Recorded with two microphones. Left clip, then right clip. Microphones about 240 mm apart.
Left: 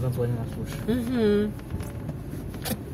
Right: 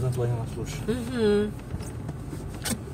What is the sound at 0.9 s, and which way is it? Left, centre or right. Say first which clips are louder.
Speech: even; centre.